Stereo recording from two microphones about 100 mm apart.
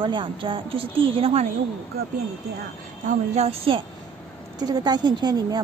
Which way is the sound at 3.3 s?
90° right.